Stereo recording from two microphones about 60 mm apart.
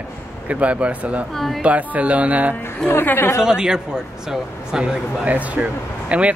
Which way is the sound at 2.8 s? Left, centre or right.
Left.